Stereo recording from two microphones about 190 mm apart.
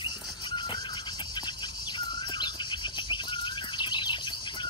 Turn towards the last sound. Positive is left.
turn(degrees=25)  # may be behind; listen again after turning